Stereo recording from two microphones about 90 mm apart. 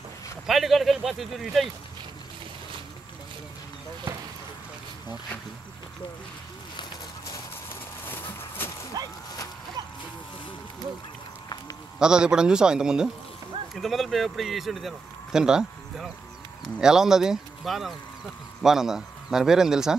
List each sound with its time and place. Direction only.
0.5 s speech: centre (ahead or behind)
8.0 s a sound: 25° left (ahead or behind)
9.0 s speech: 45° right (ahead or behind)
11.4 s run: 45° left (ahead or behind)
12.0 s a man's voice: 10° right (ahead or behind)